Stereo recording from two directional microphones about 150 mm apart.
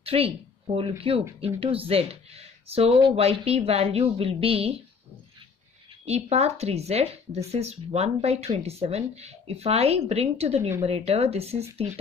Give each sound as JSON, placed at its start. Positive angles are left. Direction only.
{"t": 0.0, "sound": "speech", "side_deg": -40}
{"t": 6.0, "sound": "speech", "side_deg": -45}